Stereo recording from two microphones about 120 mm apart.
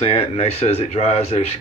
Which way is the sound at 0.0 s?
55° left (ahead or behind).